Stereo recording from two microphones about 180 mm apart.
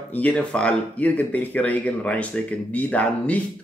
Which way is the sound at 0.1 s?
5° left (ahead or behind).